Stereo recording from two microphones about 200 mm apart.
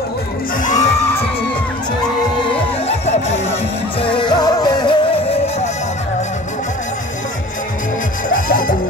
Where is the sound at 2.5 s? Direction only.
35° left (ahead or behind).